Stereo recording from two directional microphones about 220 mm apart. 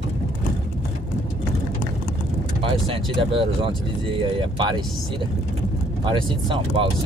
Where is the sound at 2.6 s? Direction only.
25° right (ahead or behind).